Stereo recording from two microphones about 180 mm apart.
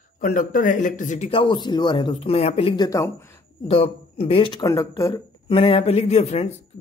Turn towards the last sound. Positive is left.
turn(degrees=35)  # may be behind; listen again after turning